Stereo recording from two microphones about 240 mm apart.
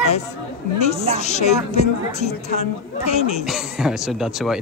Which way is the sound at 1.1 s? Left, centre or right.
Left.